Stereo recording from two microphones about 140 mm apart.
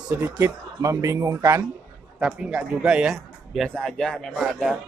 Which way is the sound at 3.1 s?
Centre (ahead or behind).